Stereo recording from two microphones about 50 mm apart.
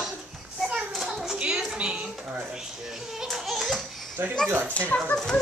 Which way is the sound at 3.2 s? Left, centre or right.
Centre.